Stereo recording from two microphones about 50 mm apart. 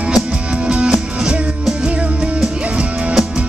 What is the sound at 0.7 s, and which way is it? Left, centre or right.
Music, centre.